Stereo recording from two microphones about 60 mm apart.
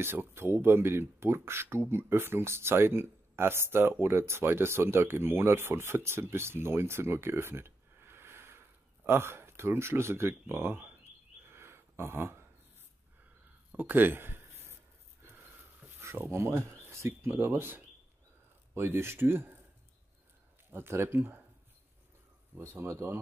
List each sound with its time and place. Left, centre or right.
0.0 s speech: right
11.5 s a sound: right
13.7 s speech: right
16.0 s speech: right
17.3 s speech: right
20.7 s speech: right
22.6 s speech: right